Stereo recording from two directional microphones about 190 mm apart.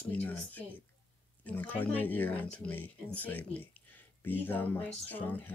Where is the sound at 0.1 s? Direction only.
10° left (ahead or behind).